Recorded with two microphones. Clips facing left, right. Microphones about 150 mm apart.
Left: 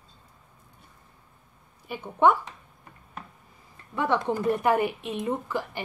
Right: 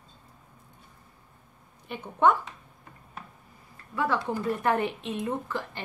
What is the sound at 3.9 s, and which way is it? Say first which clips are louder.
A woman's voice: left 2 dB; 20° left (ahead or behind).